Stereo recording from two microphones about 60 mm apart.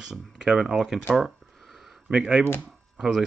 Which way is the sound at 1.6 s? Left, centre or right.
Centre.